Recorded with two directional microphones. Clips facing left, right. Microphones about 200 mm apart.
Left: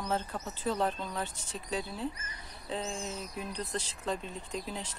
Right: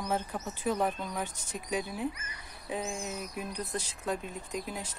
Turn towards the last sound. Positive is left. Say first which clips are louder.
# right 1 dB
turn(degrees=-10)  # may be behind; listen again after turning